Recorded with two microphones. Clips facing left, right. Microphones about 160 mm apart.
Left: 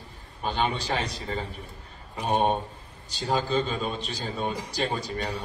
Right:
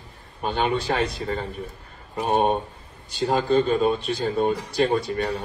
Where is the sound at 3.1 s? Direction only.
55° right (ahead or behind).